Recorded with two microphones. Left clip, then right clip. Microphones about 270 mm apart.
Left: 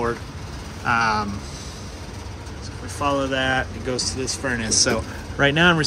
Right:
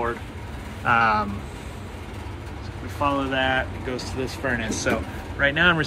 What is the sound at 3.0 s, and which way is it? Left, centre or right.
Speech, centre.